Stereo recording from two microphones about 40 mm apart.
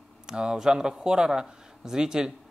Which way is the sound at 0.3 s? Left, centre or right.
Centre.